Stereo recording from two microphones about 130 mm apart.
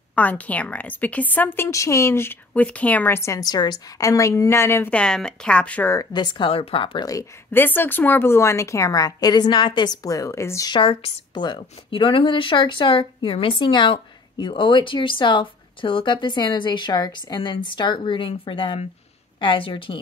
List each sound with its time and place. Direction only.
0.1 s a woman's voice: 10° left (ahead or behind)
5.9 s a woman's voice: 35° left (ahead or behind)
7.1 s a woman's voice: 25° left (ahead or behind)
7.6 s a woman's voice: 15° left (ahead or behind)
10.7 s a woman's voice: 40° left (ahead or behind)